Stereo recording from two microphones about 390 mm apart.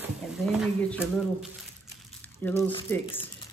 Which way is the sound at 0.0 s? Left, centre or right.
Centre.